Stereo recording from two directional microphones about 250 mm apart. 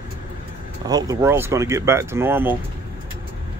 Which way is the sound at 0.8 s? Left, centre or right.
Centre.